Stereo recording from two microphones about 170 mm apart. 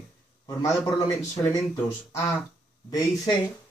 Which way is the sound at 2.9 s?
20° left (ahead or behind).